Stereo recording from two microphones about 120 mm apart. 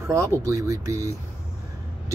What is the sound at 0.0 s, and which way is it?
Speech, 25° right (ahead or behind).